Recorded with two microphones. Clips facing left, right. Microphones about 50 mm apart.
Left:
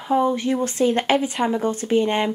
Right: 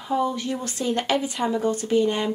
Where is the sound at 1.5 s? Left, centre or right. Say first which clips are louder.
Right 1 dB; left.